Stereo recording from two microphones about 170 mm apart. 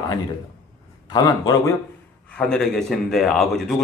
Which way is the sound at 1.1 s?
20° left (ahead or behind).